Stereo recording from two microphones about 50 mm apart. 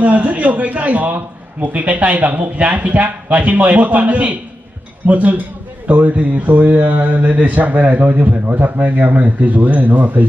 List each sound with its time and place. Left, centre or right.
0.0 s a man's voice: right